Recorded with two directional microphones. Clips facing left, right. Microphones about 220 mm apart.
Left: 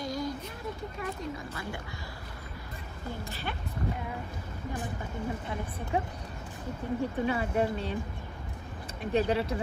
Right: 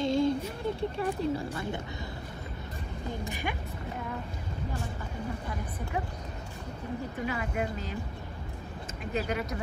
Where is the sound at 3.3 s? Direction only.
15° right (ahead or behind).